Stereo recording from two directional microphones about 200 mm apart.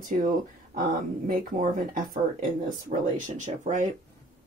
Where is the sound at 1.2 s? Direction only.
45° right (ahead or behind).